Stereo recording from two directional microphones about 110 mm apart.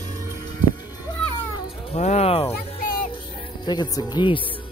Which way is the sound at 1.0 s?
40° left (ahead or behind).